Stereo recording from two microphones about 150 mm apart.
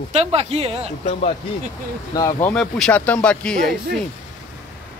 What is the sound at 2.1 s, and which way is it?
Speech, 25° left (ahead or behind).